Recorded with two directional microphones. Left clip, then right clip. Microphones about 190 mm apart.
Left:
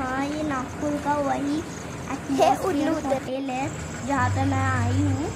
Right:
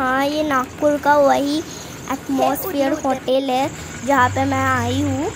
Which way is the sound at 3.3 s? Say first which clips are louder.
Right 10 dB; 45° right (ahead or behind).